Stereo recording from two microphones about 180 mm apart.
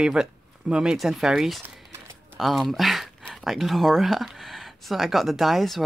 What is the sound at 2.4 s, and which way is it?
Speech, centre (ahead or behind).